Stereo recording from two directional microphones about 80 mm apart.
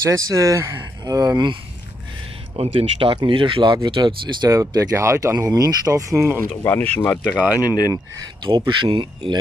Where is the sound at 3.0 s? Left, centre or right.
Right.